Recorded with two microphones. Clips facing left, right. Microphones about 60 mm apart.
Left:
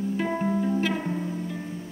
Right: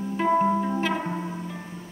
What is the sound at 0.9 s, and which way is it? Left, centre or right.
Music, right.